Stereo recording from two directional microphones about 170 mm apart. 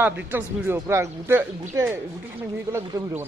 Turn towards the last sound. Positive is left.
turn(degrees=-15)  # may be behind; listen again after turning